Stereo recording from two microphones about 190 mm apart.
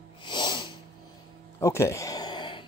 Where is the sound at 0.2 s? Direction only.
25° left (ahead or behind).